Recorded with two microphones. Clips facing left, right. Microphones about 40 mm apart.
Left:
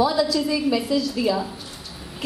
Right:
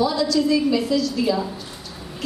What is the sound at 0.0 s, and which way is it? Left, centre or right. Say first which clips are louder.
A woman's voice: right 1 dB; centre.